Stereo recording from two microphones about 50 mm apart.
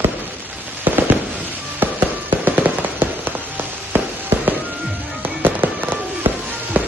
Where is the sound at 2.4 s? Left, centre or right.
Right.